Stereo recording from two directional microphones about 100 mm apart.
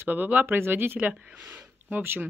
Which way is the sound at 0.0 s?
20° right (ahead or behind).